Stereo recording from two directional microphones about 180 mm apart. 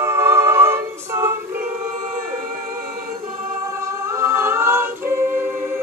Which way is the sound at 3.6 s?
15° right (ahead or behind).